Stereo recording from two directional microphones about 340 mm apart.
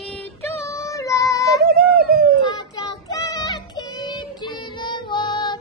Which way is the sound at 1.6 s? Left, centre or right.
Right.